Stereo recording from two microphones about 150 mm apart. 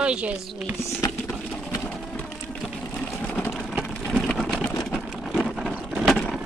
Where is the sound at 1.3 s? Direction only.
Centre (ahead or behind).